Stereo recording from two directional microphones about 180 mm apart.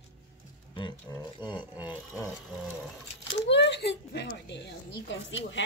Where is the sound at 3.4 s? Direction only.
75° left (ahead or behind).